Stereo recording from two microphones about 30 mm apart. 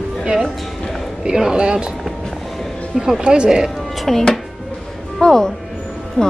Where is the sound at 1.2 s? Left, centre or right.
Right.